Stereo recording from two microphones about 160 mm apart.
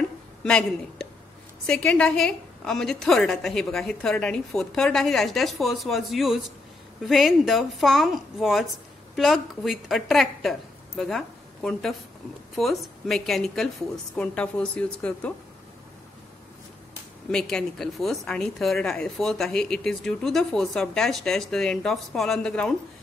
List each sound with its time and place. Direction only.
0.4 s a woman's voice: 5° left (ahead or behind)
17.3 s speech: 5° left (ahead or behind)